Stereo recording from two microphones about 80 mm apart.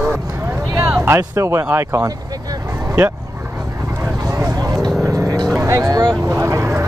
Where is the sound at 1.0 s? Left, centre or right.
Right.